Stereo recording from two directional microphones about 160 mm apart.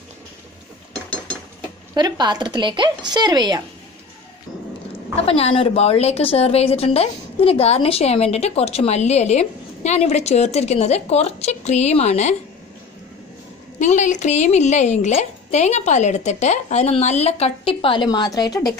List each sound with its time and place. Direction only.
2.0 s speech: 25° right (ahead or behind)
5.1 s a woman's voice: 40° left (ahead or behind)
13.7 s a woman's voice: 50° left (ahead or behind); by 18.7 s 25° left (ahead or behind)